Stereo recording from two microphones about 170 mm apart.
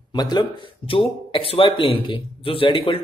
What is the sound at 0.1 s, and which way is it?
A man's voice, 25° left (ahead or behind).